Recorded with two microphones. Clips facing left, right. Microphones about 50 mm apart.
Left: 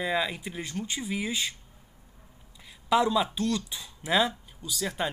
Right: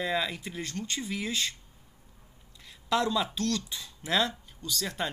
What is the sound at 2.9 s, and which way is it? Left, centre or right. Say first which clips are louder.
Speech: left 4 dB; centre.